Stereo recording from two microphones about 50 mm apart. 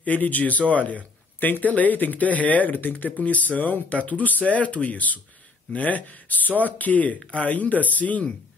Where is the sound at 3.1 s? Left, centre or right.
Left.